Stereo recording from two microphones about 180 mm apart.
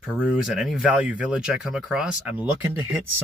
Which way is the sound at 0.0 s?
5° right (ahead or behind).